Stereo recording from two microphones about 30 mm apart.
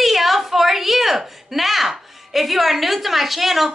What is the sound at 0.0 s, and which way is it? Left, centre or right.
A woman's voice, centre.